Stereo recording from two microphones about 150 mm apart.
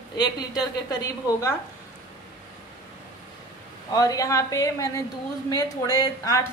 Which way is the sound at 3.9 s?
25° left (ahead or behind).